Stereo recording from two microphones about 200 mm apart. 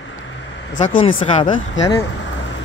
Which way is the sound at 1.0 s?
25° left (ahead or behind).